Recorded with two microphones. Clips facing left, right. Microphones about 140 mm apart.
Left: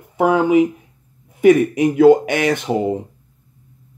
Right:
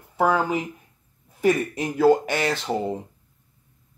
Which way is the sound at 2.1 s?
15° left (ahead or behind).